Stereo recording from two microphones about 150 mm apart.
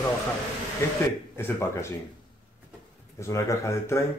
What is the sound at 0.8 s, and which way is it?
Speech, 15° left (ahead or behind).